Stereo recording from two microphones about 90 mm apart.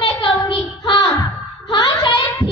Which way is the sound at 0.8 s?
50° left (ahead or behind).